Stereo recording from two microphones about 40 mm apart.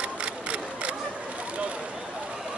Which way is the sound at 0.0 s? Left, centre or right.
Right.